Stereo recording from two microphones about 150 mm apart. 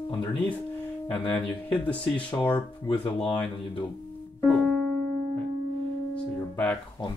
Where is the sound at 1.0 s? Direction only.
10° left (ahead or behind).